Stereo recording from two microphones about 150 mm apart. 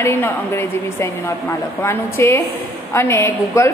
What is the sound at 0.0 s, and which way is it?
Speech, 15° left (ahead or behind).